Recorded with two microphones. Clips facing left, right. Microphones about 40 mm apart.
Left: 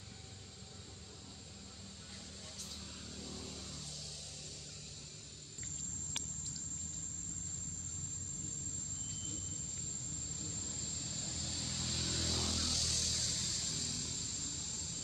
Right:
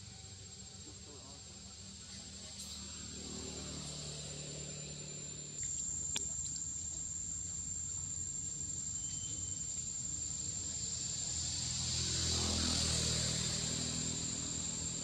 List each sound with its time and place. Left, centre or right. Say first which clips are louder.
2.8 s vehicle: left 1 dB; centre
10.4 s vehicle: left 3 dB; centre
12.6 s vehicle: right 2 dB; centre